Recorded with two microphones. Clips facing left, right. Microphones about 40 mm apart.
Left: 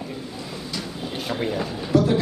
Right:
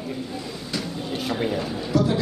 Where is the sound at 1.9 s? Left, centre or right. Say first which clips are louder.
Left 3 dB; centre.